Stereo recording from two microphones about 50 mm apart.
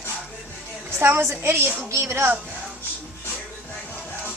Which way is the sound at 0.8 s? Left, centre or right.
Right.